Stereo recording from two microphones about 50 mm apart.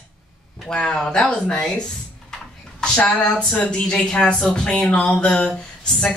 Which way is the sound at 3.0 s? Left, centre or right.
Centre.